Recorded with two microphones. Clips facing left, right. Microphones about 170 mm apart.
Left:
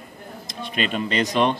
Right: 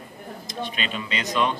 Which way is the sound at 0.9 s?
45° left (ahead or behind).